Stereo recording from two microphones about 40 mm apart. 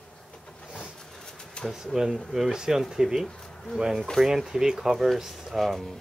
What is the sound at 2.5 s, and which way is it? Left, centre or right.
Speech, centre.